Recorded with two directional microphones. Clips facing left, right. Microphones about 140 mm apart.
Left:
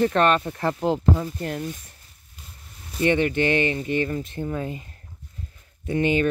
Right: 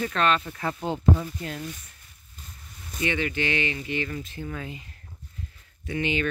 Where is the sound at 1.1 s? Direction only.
45° left (ahead or behind).